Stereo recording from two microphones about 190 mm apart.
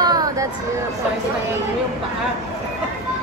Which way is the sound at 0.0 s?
20° right (ahead or behind).